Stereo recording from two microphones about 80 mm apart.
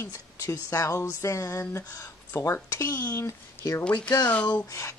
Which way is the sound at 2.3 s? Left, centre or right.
Left.